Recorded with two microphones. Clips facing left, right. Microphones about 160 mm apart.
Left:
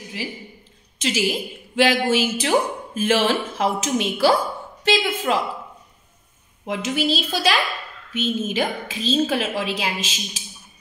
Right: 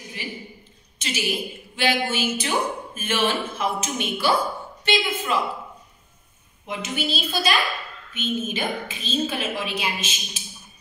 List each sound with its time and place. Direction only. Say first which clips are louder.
0.2 s a woman's voice: left 2 dB; 90° left
6.6 s speech: left 5 dB; 90° left